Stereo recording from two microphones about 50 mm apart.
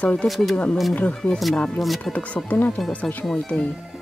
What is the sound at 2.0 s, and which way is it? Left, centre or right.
Speech, left.